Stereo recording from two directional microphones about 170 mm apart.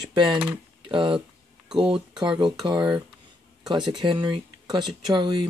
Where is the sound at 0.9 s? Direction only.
30° right (ahead or behind).